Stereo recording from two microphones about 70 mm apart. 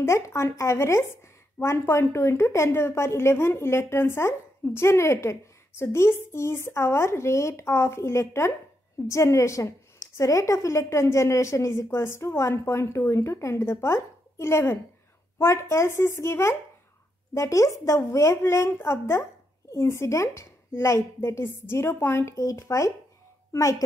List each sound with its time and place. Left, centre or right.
0.0 s a woman's voice: left